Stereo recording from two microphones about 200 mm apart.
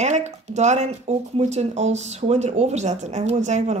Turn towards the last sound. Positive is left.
turn(degrees=-35)  # may be behind; listen again after turning